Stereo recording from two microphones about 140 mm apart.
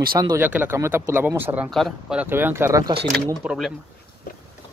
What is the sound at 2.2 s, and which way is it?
Speech, 15° right (ahead or behind).